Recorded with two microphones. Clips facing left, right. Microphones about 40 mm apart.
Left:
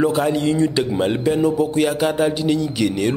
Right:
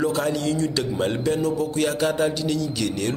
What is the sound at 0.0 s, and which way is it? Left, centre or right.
A man's voice, left.